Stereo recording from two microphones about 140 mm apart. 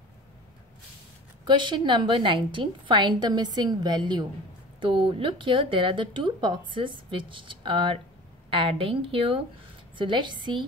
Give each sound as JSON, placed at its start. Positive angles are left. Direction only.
{"t": 1.4, "sound": "a woman's voice", "side_deg": -35}